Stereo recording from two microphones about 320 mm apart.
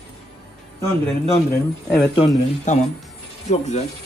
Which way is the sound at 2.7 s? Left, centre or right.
Left.